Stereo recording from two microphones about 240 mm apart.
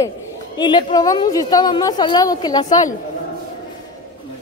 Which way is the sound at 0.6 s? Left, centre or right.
Centre.